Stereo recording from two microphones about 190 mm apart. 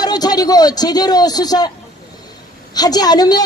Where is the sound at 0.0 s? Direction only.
20° left (ahead or behind).